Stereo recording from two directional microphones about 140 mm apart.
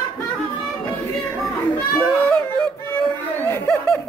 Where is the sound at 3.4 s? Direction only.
15° left (ahead or behind).